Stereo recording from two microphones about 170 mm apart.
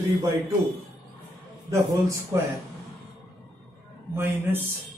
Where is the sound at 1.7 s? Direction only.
15° right (ahead or behind).